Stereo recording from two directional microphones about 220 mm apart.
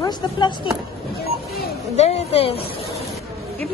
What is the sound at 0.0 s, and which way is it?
Speech, 20° left (ahead or behind).